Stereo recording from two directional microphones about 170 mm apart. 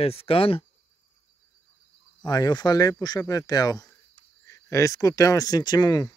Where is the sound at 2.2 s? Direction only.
25° left (ahead or behind).